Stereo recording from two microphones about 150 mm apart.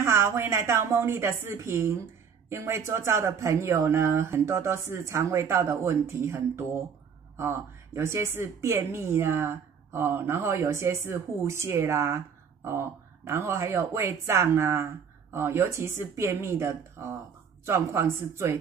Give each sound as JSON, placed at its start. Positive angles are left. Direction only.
{"t": 0.0, "sound": "speech", "side_deg": -20}